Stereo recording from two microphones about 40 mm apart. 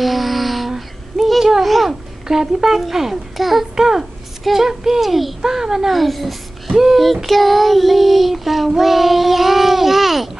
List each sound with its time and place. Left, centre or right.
0.0 s a sound: centre
2.2 s a child's voice: centre
5.4 s child singing: centre